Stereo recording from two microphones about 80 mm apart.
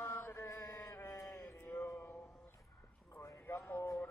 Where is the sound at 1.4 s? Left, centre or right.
Left.